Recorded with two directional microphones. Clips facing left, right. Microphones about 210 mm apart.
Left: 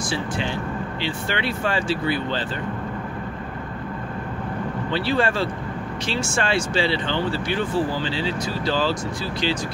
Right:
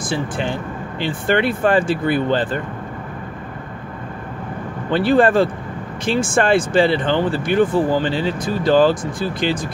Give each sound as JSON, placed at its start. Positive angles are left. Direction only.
{"t": 0.1, "sound": "speech", "side_deg": -50}
{"t": 4.9, "sound": "speech", "side_deg": -50}